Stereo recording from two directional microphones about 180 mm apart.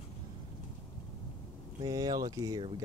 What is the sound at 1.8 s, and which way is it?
Speech, 20° right (ahead or behind).